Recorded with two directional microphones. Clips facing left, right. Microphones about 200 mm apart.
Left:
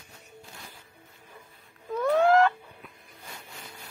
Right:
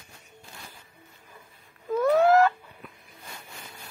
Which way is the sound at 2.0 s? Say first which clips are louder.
Right 1 dB; 5° right (ahead or behind).